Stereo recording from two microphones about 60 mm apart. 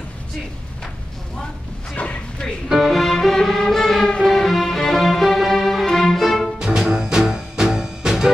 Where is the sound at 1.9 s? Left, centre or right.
Left.